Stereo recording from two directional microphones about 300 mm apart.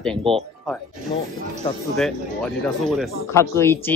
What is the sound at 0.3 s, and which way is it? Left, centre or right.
Speech, centre.